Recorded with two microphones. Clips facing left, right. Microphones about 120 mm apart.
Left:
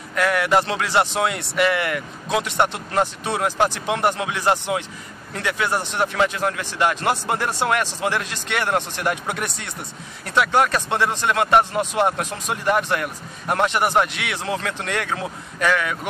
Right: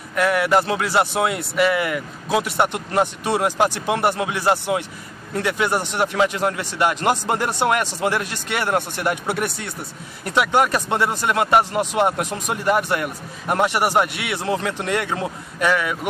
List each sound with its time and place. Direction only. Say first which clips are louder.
0.1 s speech: right 1 dB; 5° right (ahead or behind)